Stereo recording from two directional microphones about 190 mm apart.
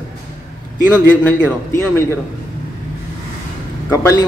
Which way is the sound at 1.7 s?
10° left (ahead or behind).